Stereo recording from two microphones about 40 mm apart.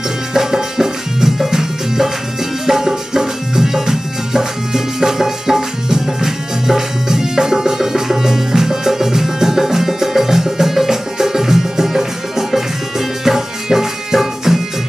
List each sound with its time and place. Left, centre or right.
0.3 s music: centre